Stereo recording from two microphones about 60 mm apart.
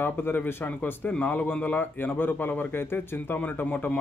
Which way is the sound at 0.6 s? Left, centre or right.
Left.